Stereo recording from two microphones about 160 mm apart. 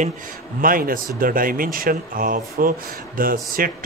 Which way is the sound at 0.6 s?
60° right (ahead or behind).